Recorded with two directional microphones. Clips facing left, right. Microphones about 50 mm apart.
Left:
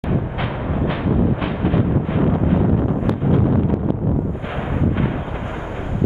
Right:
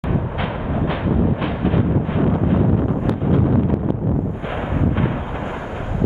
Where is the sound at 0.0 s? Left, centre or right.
Centre.